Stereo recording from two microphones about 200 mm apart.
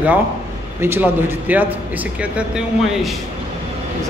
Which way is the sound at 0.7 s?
10° right (ahead or behind).